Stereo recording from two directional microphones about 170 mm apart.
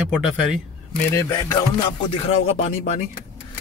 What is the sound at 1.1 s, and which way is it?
Music, 20° left (ahead or behind).